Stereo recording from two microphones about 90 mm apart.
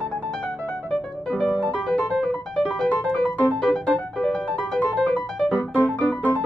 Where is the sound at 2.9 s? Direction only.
10° left (ahead or behind).